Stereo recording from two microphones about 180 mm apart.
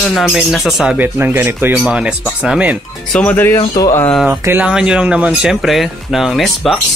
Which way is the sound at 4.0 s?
5° left (ahead or behind).